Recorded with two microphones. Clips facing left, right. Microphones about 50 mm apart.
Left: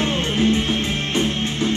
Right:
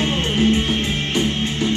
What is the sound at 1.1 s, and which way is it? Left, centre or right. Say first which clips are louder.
Music: right 1 dB; left.